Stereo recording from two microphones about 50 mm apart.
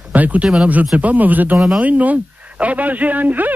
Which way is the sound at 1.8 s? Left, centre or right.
Right.